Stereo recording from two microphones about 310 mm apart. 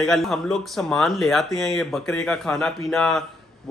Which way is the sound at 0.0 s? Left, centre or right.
Centre.